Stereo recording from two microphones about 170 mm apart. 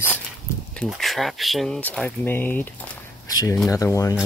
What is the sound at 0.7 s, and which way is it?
Speech, centre (ahead or behind).